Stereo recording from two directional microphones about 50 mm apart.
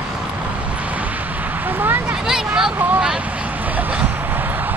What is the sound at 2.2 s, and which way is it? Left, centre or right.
Vehicle, centre.